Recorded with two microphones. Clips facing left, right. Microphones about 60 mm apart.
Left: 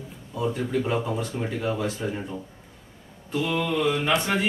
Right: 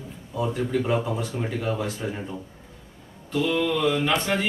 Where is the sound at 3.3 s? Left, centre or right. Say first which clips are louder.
Right 2 dB; left.